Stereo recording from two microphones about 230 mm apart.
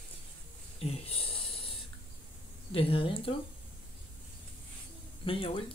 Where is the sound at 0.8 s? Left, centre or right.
Left.